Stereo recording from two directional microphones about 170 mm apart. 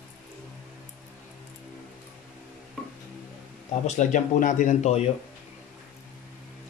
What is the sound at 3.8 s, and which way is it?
Speech, 45° left (ahead or behind).